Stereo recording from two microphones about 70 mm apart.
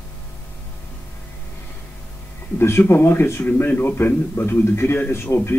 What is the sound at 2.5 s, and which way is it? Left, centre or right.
A man's voice, left.